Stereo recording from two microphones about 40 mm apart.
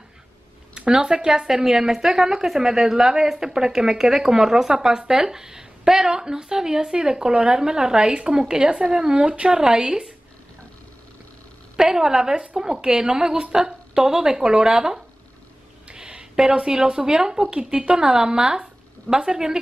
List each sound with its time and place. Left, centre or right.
0.7 s speech: centre
11.7 s speech: centre